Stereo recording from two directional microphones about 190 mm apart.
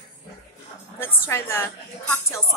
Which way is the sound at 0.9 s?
10° left (ahead or behind).